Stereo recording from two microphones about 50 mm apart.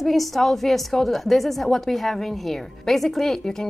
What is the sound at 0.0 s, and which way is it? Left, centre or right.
A woman's voice, centre.